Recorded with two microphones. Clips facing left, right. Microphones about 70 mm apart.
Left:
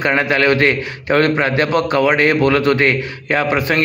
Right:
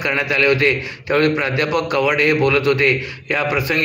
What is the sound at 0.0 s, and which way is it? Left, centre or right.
A man's voice, left.